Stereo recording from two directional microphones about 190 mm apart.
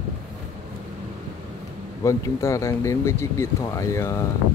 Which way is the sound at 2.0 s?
15° left (ahead or behind).